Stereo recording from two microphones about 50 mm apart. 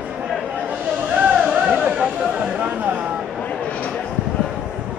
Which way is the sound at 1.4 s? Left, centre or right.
Centre.